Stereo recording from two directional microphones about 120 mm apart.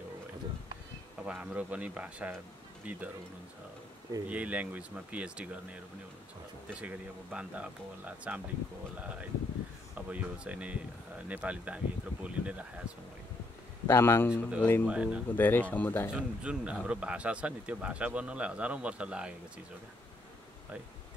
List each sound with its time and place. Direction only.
1.2 s speech: 10° right (ahead or behind)
4.3 s speech: 10° right (ahead or behind)
6.7 s speech: 10° right (ahead or behind)
13.8 s speech: 20° left (ahead or behind)
14.9 s speech: 10° right (ahead or behind)
15.3 s speech: 15° left (ahead or behind)
16.1 s speech: 10° right (ahead or behind)